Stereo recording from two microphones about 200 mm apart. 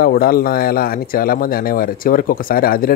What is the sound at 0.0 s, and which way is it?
Speech, 45° left (ahead or behind).